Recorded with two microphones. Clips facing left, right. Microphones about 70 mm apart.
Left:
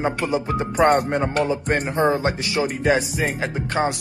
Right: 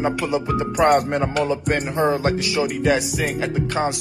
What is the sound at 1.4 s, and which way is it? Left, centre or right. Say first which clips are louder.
Speech: even; centre.